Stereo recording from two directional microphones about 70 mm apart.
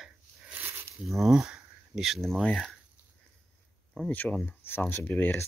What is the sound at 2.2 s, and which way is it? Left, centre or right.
Speech, centre.